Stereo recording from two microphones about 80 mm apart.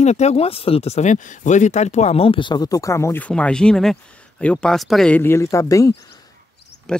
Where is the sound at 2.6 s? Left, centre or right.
Left.